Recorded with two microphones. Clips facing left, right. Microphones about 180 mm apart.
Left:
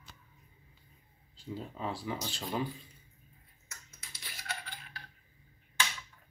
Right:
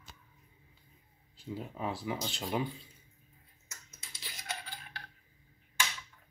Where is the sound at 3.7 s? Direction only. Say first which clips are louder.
Even; 20° right (ahead or behind).